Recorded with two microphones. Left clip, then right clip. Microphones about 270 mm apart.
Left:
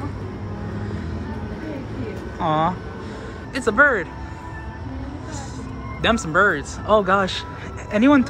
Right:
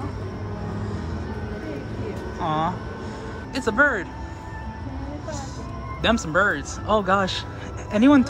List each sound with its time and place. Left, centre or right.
2.3 s speech: centre
6.0 s speech: centre